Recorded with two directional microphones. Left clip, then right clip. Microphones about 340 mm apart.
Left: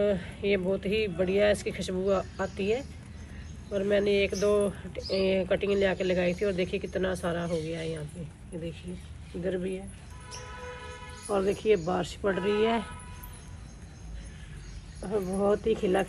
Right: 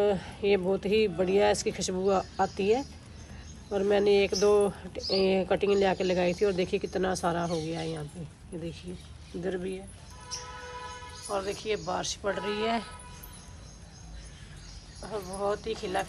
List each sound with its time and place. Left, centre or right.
0.0 s speech: centre
9.4 s speech: centre
11.2 s speech: centre
15.0 s speech: centre